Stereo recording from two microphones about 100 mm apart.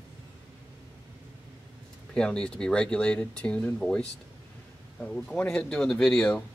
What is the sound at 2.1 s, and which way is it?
Speech, 10° left (ahead or behind).